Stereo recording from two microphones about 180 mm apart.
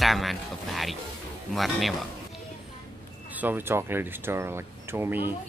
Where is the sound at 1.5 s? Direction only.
Centre (ahead or behind).